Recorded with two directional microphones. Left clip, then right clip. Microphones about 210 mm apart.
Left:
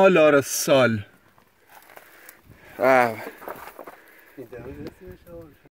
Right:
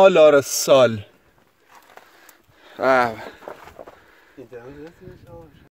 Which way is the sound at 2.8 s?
Centre (ahead or behind).